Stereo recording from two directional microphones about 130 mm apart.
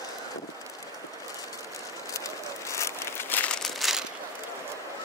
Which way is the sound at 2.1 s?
25° left (ahead or behind).